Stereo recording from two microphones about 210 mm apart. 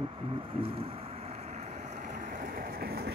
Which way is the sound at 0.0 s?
25° right (ahead or behind).